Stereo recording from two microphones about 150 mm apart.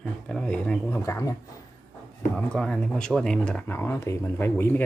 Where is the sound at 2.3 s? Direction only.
5° left (ahead or behind).